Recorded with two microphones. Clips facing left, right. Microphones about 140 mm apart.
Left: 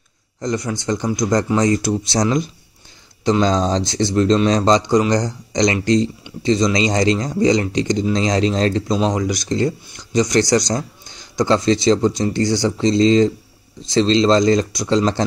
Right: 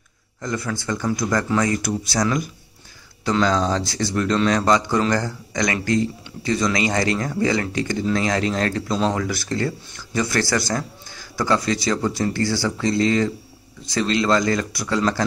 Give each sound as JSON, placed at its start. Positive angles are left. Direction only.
{"t": 0.4, "sound": "speech", "side_deg": 20}